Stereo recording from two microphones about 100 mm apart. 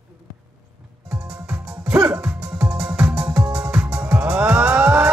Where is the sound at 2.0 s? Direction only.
25° right (ahead or behind).